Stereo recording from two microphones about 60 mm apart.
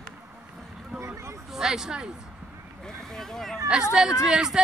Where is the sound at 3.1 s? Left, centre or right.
Centre.